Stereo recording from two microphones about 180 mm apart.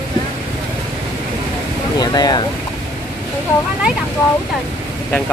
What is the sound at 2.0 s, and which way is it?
Speech, 20° left (ahead or behind).